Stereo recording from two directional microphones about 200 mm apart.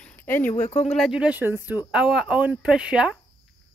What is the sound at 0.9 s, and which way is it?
Speech, centre (ahead or behind).